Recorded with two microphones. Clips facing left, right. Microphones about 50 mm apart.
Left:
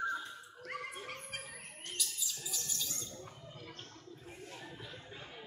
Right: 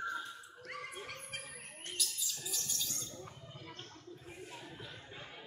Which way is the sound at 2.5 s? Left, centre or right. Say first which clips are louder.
Even; centre.